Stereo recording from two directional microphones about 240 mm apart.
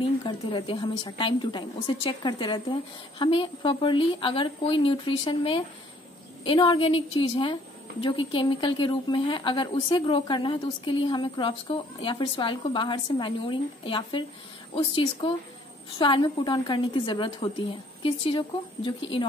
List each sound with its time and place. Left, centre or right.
0.2 s a woman's voice: centre